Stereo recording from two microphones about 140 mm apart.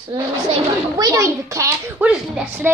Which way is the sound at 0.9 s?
25° right (ahead or behind).